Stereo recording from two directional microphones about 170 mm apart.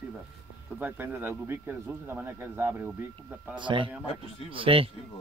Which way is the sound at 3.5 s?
30° right (ahead or behind).